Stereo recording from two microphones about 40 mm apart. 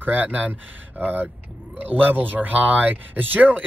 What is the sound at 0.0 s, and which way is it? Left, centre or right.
Speech, right.